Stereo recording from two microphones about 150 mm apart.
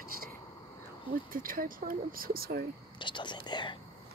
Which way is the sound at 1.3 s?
70° right (ahead or behind).